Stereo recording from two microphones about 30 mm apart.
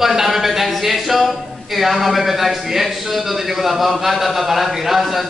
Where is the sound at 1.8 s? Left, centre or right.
Centre.